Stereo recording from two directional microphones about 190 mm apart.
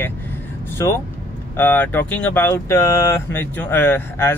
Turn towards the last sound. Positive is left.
turn(degrees=10)  # may be behind; listen again after turning